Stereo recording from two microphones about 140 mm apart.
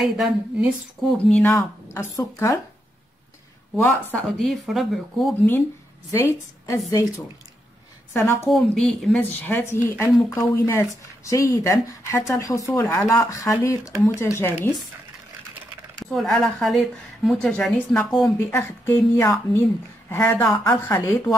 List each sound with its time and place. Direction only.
0.0 s speech: 5° right (ahead or behind)
1.3 s speech: 15° left (ahead or behind)
4.4 s speech: centre (ahead or behind)
6.1 s speech: 20° left (ahead or behind)
8.5 s a woman's voice: centre (ahead or behind)
16.0 s speech: 5° left (ahead or behind)
18.2 s a woman's voice: 20° left (ahead or behind)